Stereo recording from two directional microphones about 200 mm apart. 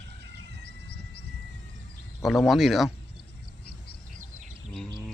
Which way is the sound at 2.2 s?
Centre (ahead or behind).